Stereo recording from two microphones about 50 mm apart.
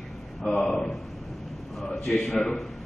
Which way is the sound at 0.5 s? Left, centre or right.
Centre.